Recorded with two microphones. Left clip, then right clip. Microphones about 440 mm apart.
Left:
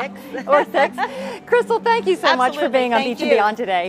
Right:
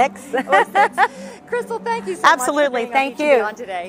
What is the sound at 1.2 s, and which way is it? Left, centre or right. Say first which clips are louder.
A woman's voice: left 7 dB; left.